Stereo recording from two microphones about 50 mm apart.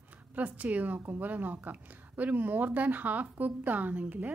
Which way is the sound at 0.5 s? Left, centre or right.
Right.